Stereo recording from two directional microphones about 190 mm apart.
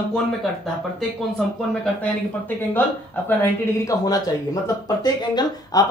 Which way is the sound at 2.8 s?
10° left (ahead or behind).